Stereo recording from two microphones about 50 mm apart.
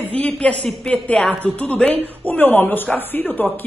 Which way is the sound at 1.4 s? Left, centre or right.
Left.